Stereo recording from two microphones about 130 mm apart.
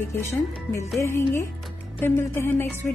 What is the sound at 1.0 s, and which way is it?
A woman's voice, 20° left (ahead or behind).